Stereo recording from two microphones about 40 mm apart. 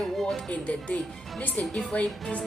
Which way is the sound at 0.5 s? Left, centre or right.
Left.